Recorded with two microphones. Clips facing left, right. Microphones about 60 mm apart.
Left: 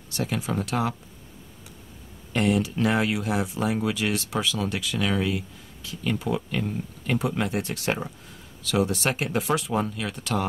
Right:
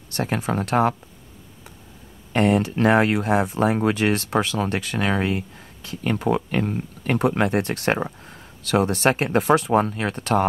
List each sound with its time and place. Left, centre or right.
0.1 s speech: right
2.3 s speech: right